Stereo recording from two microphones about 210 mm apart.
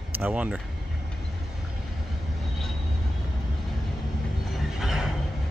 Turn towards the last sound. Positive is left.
turn(degrees=0)  # may be behind; listen again after turning